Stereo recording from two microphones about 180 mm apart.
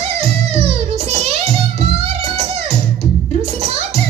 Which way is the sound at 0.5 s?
35° right (ahead or behind).